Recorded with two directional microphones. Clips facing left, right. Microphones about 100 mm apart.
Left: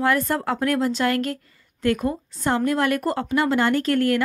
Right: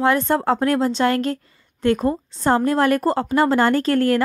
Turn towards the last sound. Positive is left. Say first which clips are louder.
# right 3 dB
turn(degrees=-35)  # may be behind; listen again after turning